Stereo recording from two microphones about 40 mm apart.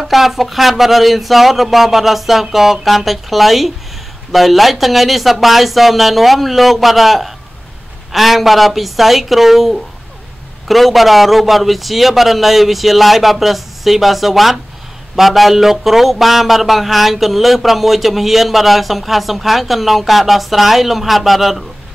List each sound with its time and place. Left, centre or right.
0.0 s speech: centre